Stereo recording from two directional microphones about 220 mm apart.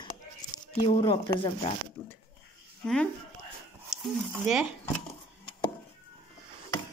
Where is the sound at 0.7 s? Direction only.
20° left (ahead or behind).